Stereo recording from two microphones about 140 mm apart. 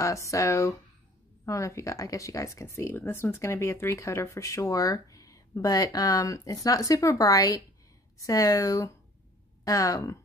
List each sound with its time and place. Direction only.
0.0 s speech: 25° left (ahead or behind)